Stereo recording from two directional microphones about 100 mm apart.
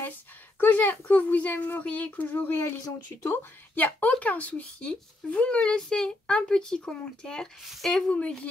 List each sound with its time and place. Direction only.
0.6 s a woman's voice: 15° left (ahead or behind)